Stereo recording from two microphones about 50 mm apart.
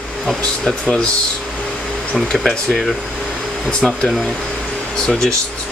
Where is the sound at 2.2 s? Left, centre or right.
Centre.